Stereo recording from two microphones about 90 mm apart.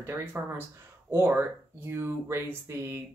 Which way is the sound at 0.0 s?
25° right (ahead or behind).